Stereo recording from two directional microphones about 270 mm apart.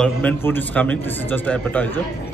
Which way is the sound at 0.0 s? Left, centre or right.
Centre.